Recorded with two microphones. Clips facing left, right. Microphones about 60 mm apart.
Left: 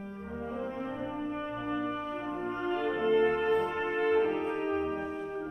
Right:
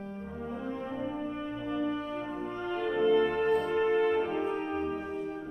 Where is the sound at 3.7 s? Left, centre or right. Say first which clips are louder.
Right 2 dB; left.